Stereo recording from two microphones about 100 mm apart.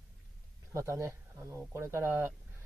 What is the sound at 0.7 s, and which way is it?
Speech, 30° right (ahead or behind).